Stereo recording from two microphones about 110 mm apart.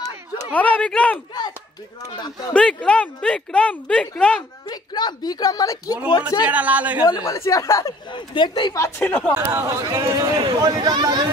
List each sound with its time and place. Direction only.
0.5 s speech: 15° left (ahead or behind)
2.0 s a woman's voice: 40° left (ahead or behind)
2.5 s speech: 10° left (ahead or behind)
4.6 s a woman's voice: 40° left (ahead or behind)
6.4 s speech: 15° right (ahead or behind)
7.1 s speech: 30° left (ahead or behind)
8.1 s speech: 45° left (ahead or behind)
8.7 s speech: 25° left (ahead or behind)
9.4 s speech: 25° right (ahead or behind)